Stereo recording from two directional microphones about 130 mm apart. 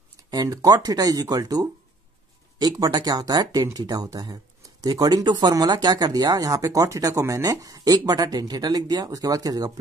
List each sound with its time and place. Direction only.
0.3 s speech: 30° right (ahead or behind)